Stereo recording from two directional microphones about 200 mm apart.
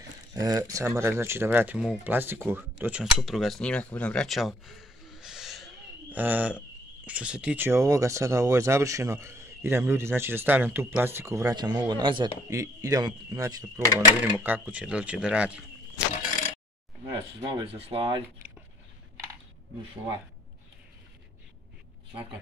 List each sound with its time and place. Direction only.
0.3 s speech: 20° right (ahead or behind)
17.4 s speech: 20° right (ahead or behind)